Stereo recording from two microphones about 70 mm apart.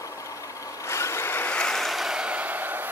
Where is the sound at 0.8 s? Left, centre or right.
Left.